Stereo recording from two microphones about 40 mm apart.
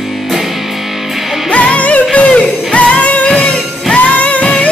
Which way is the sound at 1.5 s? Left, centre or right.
Left.